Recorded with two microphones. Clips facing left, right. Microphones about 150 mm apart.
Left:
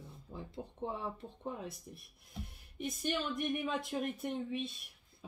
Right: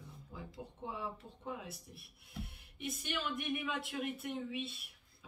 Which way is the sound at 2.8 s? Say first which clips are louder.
Left 4 dB; 35° left (ahead or behind).